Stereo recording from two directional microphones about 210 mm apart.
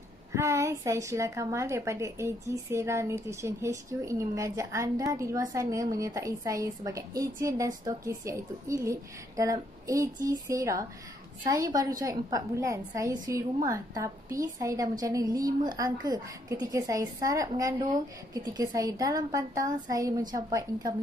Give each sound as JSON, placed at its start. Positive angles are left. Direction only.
{"t": 0.3, "sound": "a woman's voice", "side_deg": -15}